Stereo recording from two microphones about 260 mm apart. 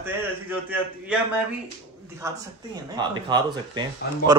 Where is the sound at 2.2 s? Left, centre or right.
Centre.